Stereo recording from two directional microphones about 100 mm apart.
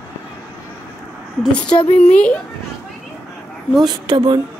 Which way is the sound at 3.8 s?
45° right (ahead or behind).